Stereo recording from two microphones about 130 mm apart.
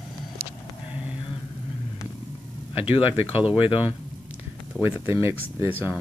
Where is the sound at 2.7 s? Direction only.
45° left (ahead or behind).